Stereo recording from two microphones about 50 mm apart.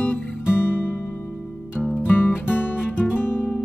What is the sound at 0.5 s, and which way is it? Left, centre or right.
Music, left.